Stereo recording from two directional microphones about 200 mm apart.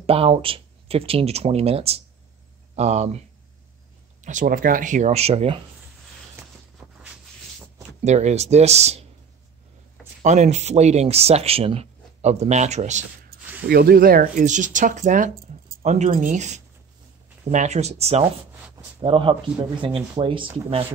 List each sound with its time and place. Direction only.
0.0 s speech: 30° right (ahead or behind)
8.0 s speech: 35° right (ahead or behind)
10.2 s speech: 35° right (ahead or behind)
13.3 s a sound: 55° right (ahead or behind)
13.7 s speech: 50° right (ahead or behind); by 20.8 s 25° right (ahead or behind)